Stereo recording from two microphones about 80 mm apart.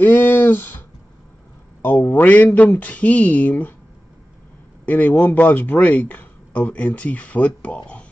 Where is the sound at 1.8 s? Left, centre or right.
Left.